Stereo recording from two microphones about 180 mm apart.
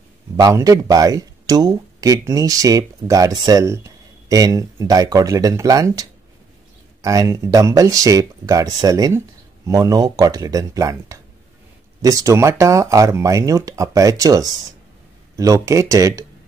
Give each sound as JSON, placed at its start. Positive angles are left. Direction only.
{"t": 0.4, "sound": "speech", "side_deg": -20}